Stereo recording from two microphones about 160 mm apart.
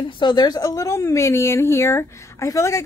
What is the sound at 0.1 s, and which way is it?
A woman's voice, 30° left (ahead or behind).